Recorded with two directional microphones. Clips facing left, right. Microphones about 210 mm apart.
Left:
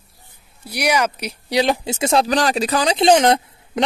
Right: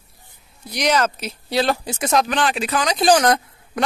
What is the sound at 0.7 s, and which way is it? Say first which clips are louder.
Speech: even; 10° left (ahead or behind).